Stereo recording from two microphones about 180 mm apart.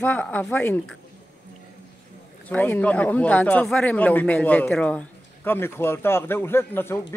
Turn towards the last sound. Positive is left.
turn(degrees=15)  # may be behind; listen again after turning